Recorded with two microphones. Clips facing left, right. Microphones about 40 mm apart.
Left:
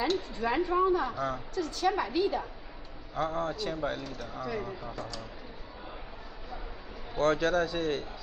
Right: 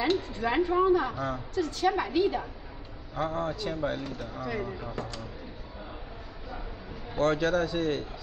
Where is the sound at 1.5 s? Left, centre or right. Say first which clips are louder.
Right 4 dB; right.